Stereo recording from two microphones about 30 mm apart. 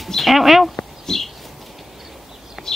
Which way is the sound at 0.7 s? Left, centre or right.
Centre.